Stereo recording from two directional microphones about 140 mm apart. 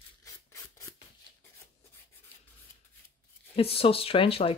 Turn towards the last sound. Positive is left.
turn(degrees=40)  # may be behind; listen again after turning